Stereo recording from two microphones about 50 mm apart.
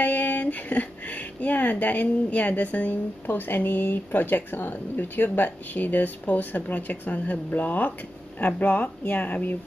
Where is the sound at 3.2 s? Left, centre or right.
Left.